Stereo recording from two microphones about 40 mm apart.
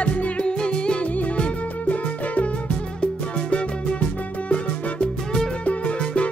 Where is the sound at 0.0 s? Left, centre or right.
Left.